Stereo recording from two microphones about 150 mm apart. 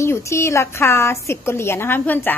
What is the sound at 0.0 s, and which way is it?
A woman's voice, 20° left (ahead or behind).